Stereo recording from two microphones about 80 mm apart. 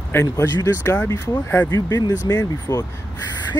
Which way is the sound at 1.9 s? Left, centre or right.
Left.